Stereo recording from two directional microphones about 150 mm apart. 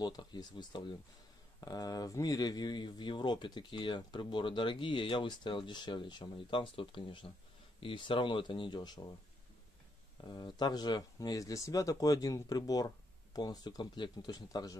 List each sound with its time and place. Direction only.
0.0 s speech: 30° left (ahead or behind)
10.2 s speech: 30° left (ahead or behind)